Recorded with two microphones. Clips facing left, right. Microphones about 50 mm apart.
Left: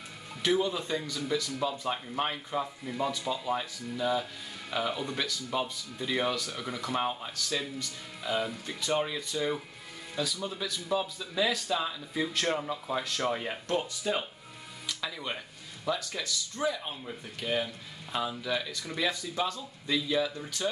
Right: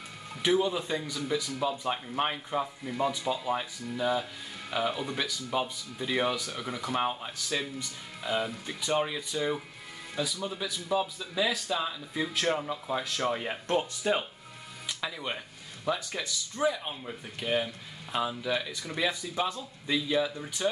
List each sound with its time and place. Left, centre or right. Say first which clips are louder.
0.4 s speech: right 2 dB; centre
13.7 s speech: right 3 dB; right
14.9 s a sound: right 1 dB; centre
16.0 s speech: even; centre